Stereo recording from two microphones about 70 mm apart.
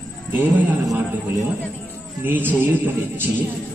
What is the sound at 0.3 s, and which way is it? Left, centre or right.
Speech, right.